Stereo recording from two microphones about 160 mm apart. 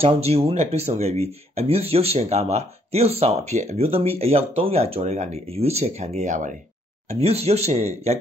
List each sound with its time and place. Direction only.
0.0 s speech: 40° right (ahead or behind)
7.1 s speech: 40° right (ahead or behind)